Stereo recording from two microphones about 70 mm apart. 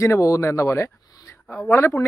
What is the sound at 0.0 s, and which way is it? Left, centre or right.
Speech, left.